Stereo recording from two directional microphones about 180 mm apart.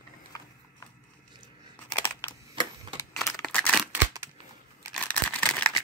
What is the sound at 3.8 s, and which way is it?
Scissors, 10° right (ahead or behind).